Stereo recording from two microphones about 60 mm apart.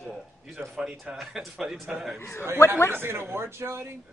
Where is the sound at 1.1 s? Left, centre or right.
Centre.